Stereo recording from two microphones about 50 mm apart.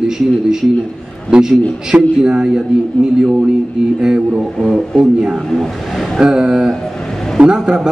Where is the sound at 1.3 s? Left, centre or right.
Centre.